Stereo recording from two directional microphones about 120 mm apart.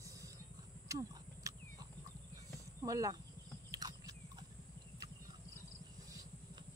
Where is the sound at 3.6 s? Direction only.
30° right (ahead or behind).